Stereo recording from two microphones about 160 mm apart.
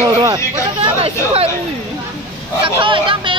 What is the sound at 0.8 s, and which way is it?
Speech, 40° right (ahead or behind).